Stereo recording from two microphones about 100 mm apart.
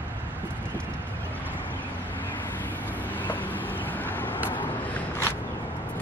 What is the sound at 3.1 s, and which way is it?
Vehicle, 20° left (ahead or behind).